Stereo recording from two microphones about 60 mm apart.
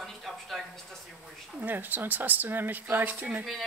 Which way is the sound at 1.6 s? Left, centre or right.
Right.